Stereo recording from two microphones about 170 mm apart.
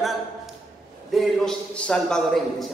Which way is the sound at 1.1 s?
5° left (ahead or behind).